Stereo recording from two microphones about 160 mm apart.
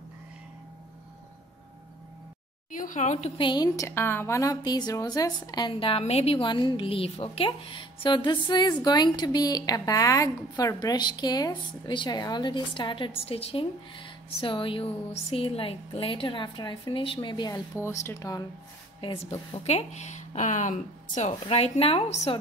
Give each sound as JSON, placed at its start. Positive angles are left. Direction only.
{"t": 2.7, "sound": "speech", "side_deg": 55}
{"t": 3.4, "sound": "a woman's voice", "side_deg": 25}
{"t": 18.9, "sound": "speech", "side_deg": 30}
{"t": 19.6, "sound": "speech", "side_deg": 45}